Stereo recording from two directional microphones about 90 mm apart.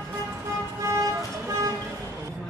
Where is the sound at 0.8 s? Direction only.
35° right (ahead or behind).